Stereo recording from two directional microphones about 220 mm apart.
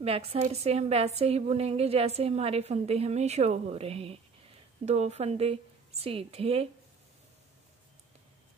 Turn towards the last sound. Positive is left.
turn(degrees=-25)  # may be behind; listen again after turning